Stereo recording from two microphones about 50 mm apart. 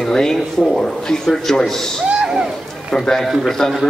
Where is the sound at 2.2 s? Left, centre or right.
Centre.